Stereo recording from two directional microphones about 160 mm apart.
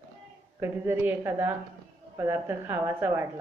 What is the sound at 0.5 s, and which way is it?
Speech, 15° right (ahead or behind).